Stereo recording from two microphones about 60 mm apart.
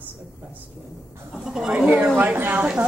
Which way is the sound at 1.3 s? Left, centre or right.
Centre.